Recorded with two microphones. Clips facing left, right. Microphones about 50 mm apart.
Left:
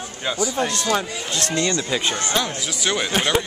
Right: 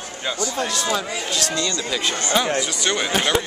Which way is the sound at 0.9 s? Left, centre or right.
Left.